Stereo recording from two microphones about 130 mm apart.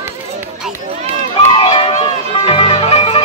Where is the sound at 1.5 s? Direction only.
40° left (ahead or behind).